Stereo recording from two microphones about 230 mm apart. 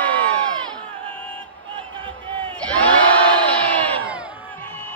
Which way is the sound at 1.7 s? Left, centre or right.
Right.